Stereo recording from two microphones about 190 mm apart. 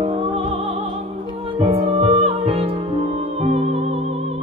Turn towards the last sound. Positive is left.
turn(degrees=-35)  # may be behind; listen again after turning